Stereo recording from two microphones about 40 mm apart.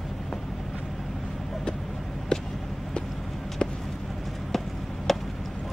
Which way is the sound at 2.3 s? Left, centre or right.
Centre.